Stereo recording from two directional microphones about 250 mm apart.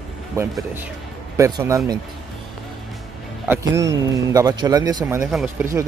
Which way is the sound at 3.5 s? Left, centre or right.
Centre.